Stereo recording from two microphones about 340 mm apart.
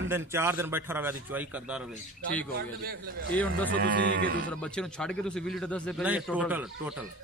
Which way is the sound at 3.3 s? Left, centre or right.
Centre.